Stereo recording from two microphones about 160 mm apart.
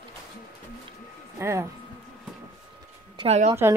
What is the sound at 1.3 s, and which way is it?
Speech, 15° right (ahead or behind).